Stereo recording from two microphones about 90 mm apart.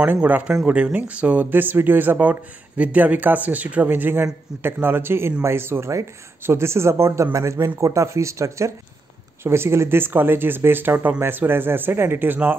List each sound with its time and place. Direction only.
0.0 s speech: 15° right (ahead or behind)